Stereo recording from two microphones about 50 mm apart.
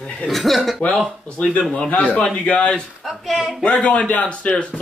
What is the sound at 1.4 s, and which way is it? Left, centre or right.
A man's voice, left.